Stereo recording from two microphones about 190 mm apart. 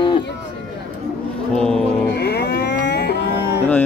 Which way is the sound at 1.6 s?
5° left (ahead or behind).